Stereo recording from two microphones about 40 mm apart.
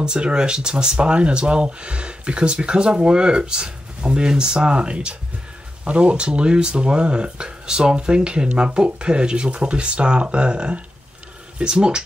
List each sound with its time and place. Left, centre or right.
0.0 s speech: right